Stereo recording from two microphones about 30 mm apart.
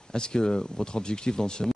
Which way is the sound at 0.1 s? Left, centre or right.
Left.